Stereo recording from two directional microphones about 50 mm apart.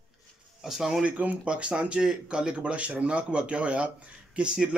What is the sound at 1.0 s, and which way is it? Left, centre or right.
Speech, right.